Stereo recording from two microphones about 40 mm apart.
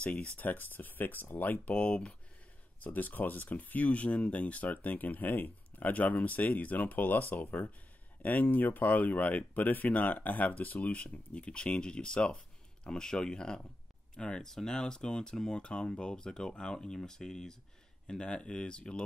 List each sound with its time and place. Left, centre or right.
0.0 s speech: left
0.4 s speech: left
1.6 s speech: left
2.8 s speech: left